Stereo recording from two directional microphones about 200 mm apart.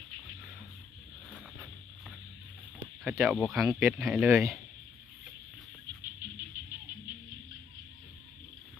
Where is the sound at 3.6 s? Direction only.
15° right (ahead or behind).